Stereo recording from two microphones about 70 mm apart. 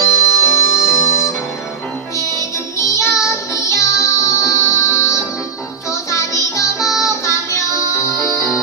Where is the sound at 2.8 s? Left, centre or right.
Left.